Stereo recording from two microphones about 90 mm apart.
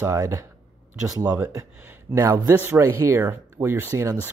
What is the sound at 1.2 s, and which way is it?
Speech, 15° right (ahead or behind).